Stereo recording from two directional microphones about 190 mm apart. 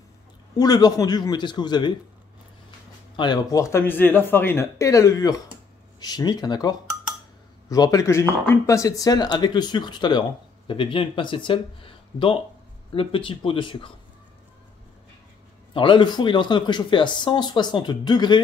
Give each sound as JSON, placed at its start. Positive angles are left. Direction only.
{"t": 0.6, "sound": "speech", "side_deg": 20}
{"t": 3.2, "sound": "speech", "side_deg": 20}
{"t": 15.7, "sound": "speech", "side_deg": 25}